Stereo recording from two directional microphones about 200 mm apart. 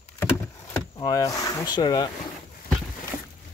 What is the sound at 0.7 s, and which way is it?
Speech, 20° left (ahead or behind).